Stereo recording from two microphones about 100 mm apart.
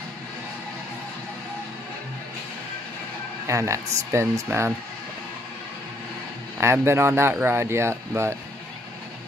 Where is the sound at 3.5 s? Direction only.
30° right (ahead or behind).